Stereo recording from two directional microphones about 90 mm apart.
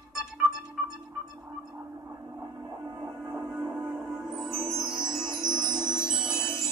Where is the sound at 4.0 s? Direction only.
5° right (ahead or behind).